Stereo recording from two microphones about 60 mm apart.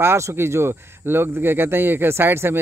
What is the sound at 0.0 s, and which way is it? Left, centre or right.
Speech, right.